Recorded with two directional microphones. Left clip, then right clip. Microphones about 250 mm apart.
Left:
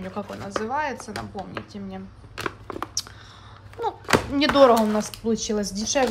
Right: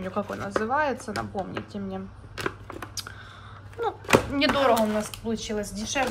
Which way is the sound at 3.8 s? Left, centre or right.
Centre.